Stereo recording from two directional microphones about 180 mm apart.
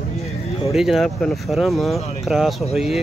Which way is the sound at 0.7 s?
Centre (ahead or behind).